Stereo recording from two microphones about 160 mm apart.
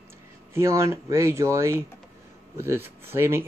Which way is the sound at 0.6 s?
20° right (ahead or behind).